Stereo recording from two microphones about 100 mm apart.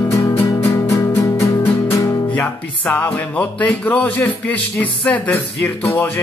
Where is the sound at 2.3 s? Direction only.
15° left (ahead or behind).